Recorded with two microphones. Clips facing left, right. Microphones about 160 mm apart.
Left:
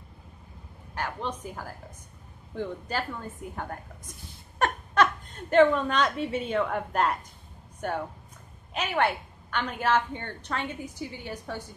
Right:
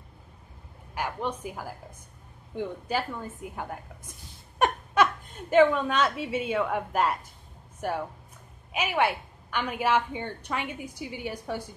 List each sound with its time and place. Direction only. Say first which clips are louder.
0.9 s a woman's voice: right 2 dB; 10° right (ahead or behind)